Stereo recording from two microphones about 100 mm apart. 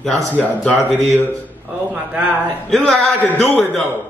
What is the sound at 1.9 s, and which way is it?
Speech, 10° right (ahead or behind).